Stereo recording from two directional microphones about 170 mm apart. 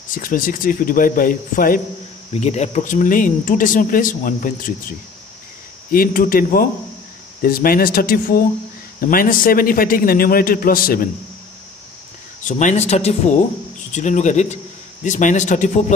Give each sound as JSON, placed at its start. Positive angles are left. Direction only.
{"t": 0.1, "sound": "speech", "side_deg": 55}
{"t": 2.3, "sound": "speech", "side_deg": 40}
{"t": 5.9, "sound": "a man's voice", "side_deg": 55}
{"t": 12.4, "sound": "speech", "side_deg": 45}